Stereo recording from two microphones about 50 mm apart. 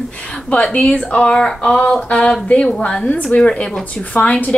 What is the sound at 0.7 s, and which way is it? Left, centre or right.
Speech, left.